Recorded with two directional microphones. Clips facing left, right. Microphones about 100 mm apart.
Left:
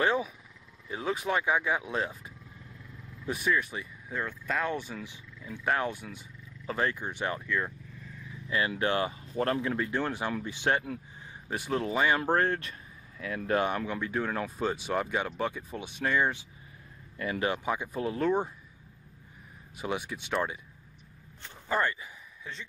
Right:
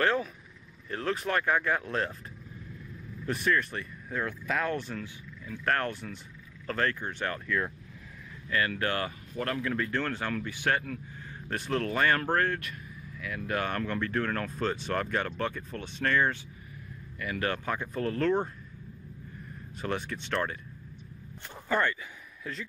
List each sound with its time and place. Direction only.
0.0 s speech: 10° left (ahead or behind)
3.3 s speech: 5° left (ahead or behind)
7.4 s speech: centre (ahead or behind)
8.5 s speech: 20° left (ahead or behind)
11.4 s speech: 10° left (ahead or behind); by 13.7 s 30° left (ahead or behind)
13.7 s speech: 10° left (ahead or behind)
19.8 s speech: 10° left (ahead or behind)
21.7 s speech: 5° left (ahead or behind)